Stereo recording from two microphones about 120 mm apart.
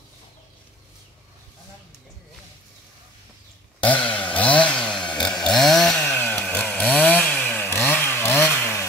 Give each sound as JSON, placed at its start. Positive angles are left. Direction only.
{"t": 3.8, "sound": "chainsaw", "side_deg": 10}